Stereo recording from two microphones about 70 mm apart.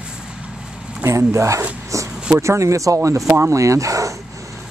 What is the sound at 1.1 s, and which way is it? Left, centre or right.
Speech, right.